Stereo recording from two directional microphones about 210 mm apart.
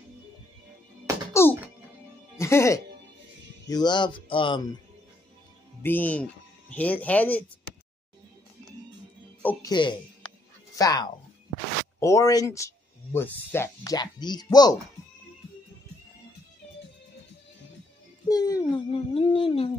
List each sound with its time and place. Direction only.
1.3 s music: 10° left (ahead or behind)
2.3 s speech: 15° left (ahead or behind)
5.8 s speech: 10° left (ahead or behind)
9.4 s music: 10° left (ahead or behind)
9.7 s speech: 20° left (ahead or behind)
18.3 s a sound: 15° left (ahead or behind)